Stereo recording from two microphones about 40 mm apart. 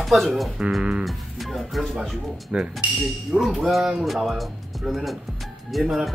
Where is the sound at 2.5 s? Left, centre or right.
Right.